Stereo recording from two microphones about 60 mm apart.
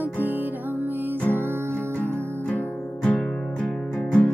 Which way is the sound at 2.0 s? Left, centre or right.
Left.